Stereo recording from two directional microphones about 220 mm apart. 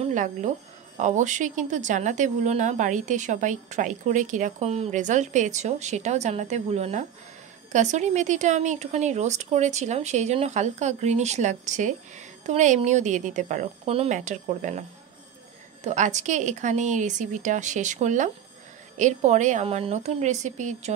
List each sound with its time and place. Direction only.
0.0 s a woman's voice: 35° right (ahead or behind)